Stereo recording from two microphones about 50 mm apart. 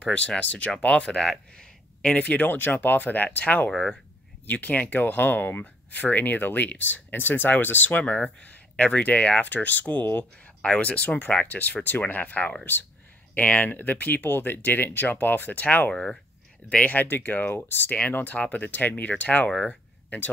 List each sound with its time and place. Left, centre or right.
0.0 s speech: left
3.7 s speech: centre
4.5 s speech: left
10.6 s speech: left
15.9 s speech: centre
16.6 s speech: left